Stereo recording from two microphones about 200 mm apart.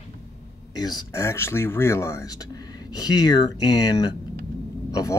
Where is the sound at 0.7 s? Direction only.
20° left (ahead or behind).